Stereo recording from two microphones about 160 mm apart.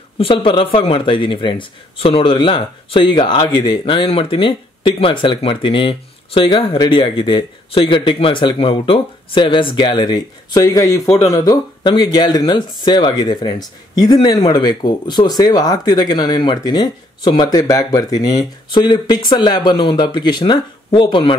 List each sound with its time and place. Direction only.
0.2 s a man's voice: 30° left (ahead or behind)